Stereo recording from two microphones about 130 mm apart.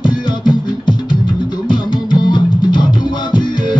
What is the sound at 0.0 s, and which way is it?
Music, 35° left (ahead or behind).